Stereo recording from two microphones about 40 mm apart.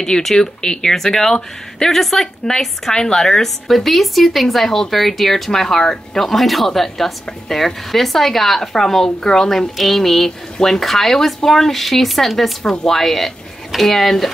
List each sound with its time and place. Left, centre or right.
0.0 s a woman's voice: centre